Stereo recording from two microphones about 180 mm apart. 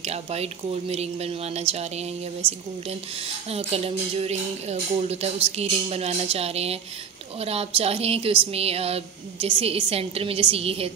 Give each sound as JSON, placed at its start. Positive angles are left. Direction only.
{"t": 0.0, "sound": "speech", "side_deg": -35}
{"t": 2.4, "sound": "a woman's voice", "side_deg": -10}
{"t": 2.9, "sound": "speech", "side_deg": -35}